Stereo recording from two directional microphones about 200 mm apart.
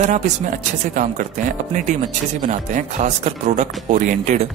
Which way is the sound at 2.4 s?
40° right (ahead or behind).